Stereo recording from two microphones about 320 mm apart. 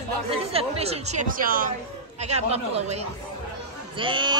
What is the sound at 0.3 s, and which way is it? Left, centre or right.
Speech, centre.